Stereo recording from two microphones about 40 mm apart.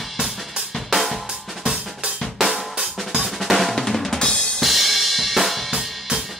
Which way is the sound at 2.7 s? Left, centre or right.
Centre.